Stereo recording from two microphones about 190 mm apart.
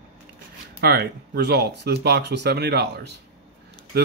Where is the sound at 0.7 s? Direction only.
55° right (ahead or behind).